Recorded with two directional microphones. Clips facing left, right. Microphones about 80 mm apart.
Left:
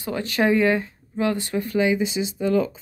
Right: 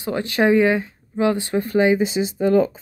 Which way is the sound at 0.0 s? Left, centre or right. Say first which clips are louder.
Right 3 dB; right.